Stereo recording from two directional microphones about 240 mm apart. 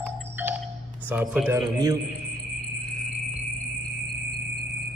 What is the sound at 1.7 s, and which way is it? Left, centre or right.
Speech, centre.